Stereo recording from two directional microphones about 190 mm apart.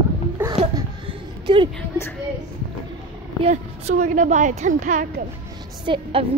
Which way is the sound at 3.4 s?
35° right (ahead or behind).